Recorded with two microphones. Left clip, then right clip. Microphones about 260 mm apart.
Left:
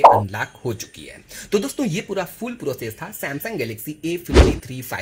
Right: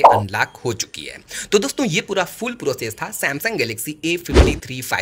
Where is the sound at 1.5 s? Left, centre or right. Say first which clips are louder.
Right 4 dB; right.